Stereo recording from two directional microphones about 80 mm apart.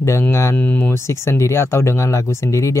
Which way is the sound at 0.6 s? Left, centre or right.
Centre.